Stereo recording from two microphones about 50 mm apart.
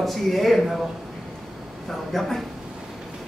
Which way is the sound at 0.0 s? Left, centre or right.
Centre.